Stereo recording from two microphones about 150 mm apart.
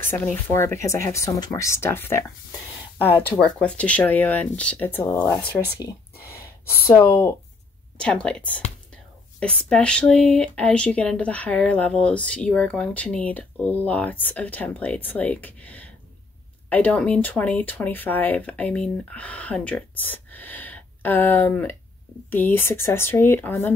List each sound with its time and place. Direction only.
0.0 s speech: 15° left (ahead or behind)
6.9 s speech: 15° left (ahead or behind)